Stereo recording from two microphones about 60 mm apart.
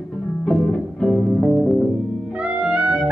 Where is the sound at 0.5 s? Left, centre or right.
Centre.